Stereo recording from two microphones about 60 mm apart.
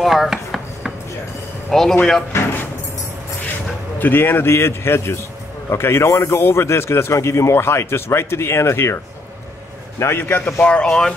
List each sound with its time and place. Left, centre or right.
0.0 s chopping: centre
1.7 s speech: centre
2.3 s keys jangling: left
4.0 s a man's voice: left
10.2 s a man's voice: left
10.6 s speech: centre